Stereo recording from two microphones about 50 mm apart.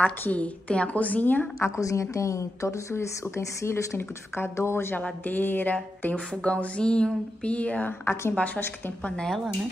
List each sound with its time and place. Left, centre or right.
0.3 s a woman's voice: left
1.6 s a woman's voice: left
5.2 s a woman's voice: left
6.0 s speech: left
8.0 s a woman's voice: left
9.0 s speech: centre